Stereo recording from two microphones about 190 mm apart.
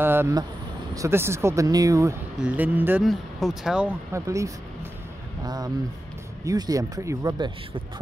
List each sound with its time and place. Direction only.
0.0 s speech: 10° right (ahead or behind)
4.1 s speech: 15° right (ahead or behind)